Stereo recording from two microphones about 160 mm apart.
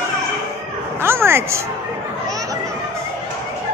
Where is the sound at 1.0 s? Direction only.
15° right (ahead or behind).